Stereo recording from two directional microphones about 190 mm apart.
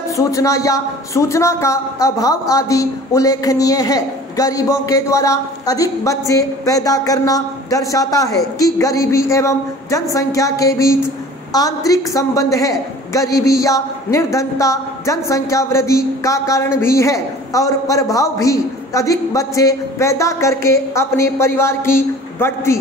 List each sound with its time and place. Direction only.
0.1 s speech: 15° left (ahead or behind)